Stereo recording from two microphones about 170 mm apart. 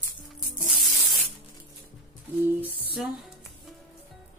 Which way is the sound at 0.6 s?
Centre (ahead or behind).